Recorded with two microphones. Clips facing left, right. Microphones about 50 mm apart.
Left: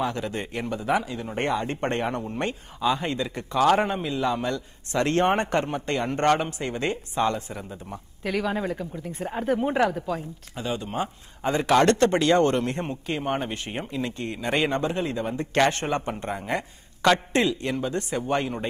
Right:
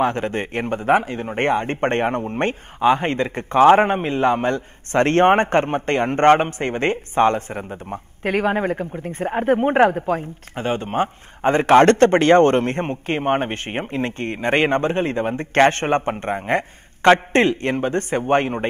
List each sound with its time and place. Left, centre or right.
0.0 s a man's voice: right